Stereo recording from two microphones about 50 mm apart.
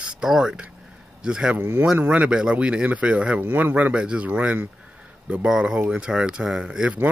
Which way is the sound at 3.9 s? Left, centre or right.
Centre.